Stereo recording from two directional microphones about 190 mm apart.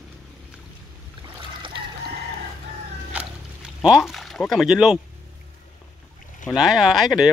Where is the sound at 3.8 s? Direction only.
5° right (ahead or behind).